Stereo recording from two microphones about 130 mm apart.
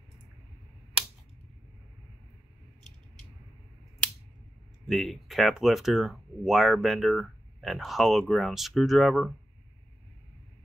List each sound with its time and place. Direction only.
4.8 s speech: centre (ahead or behind)